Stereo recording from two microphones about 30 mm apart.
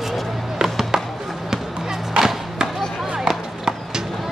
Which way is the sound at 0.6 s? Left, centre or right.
Centre.